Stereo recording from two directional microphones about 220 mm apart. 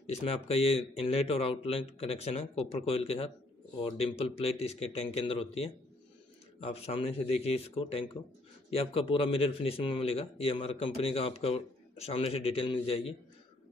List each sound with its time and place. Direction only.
0.0 s speech: 30° left (ahead or behind)